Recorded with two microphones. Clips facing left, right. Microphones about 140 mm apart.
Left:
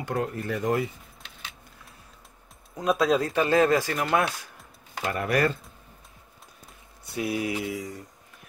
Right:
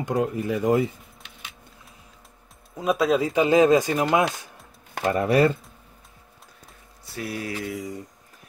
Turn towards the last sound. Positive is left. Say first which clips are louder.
# right 1 dB
turn(degrees=0)  # may be behind; listen again after turning